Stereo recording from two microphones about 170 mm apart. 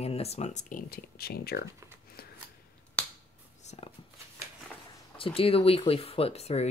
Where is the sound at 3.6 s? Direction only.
35° left (ahead or behind).